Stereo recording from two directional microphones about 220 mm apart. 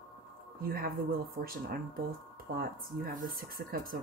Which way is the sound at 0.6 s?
40° right (ahead or behind).